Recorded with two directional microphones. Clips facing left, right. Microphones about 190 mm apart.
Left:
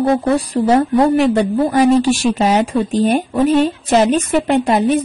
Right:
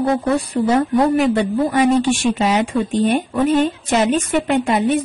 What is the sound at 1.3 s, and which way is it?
A woman's voice, 35° left (ahead or behind).